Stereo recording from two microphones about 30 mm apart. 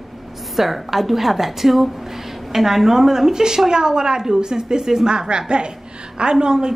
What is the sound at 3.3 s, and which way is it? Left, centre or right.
A woman's voice, right.